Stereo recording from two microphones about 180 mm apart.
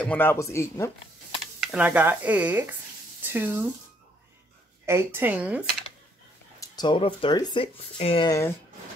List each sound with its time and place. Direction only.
0.0 s speech: 10° left (ahead or behind)
1.6 s speech: 5° right (ahead or behind)
4.8 s speech: 15° right (ahead or behind)
6.6 s speech: 25° left (ahead or behind)
8.3 s speech: 15° left (ahead or behind)